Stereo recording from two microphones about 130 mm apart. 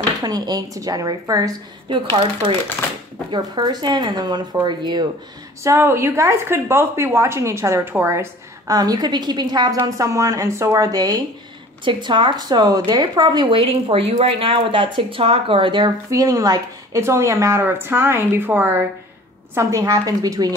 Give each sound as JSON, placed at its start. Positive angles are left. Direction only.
{"t": 0.2, "sound": "a woman's voice", "side_deg": -30}
{"t": 3.3, "sound": "a woman's voice", "side_deg": -35}
{"t": 5.6, "sound": "a woman's voice", "side_deg": -20}
{"t": 16.1, "sound": "a woman's voice", "side_deg": -25}